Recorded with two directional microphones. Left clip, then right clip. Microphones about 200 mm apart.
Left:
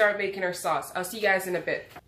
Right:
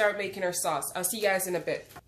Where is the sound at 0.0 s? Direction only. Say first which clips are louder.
Left 3 dB; 35° right (ahead or behind).